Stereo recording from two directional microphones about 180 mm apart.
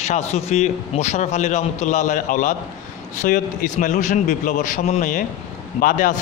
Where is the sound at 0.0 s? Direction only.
35° left (ahead or behind).